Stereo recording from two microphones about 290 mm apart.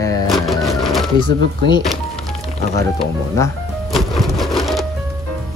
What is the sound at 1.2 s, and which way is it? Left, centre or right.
Speech, centre.